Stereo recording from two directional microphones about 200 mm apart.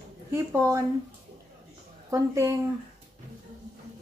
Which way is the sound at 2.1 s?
15° right (ahead or behind).